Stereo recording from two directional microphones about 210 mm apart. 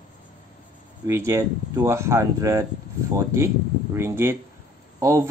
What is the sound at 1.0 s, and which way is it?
Speech, 15° right (ahead or behind).